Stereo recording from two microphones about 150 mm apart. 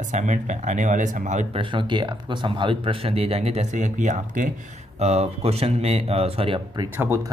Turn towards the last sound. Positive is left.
turn(degrees=-15)  # may be behind; listen again after turning